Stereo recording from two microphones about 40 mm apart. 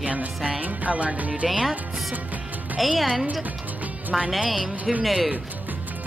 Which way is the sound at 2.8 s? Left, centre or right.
Centre.